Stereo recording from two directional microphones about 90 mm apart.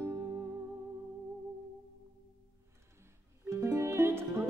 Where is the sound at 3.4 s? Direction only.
30° right (ahead or behind).